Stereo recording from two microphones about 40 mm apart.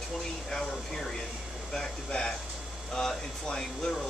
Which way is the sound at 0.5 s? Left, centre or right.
Centre.